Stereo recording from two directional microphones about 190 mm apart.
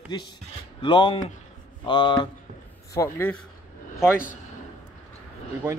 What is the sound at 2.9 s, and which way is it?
Speech, 15° left (ahead or behind).